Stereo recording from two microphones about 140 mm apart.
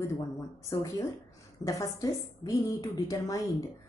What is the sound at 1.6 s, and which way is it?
Speech, 25° left (ahead or behind).